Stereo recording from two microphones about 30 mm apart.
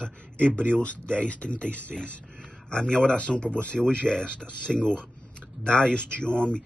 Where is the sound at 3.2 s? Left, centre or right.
Left.